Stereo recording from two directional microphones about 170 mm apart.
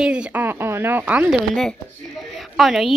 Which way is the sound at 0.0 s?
5° right (ahead or behind).